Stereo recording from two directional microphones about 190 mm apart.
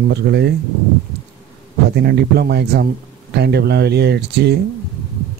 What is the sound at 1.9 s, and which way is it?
Speech, 60° right (ahead or behind).